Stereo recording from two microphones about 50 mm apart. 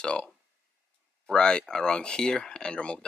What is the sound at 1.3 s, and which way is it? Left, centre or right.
Speech, centre.